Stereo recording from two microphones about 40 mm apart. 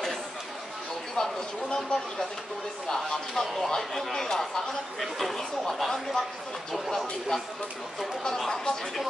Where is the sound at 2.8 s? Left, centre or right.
Centre.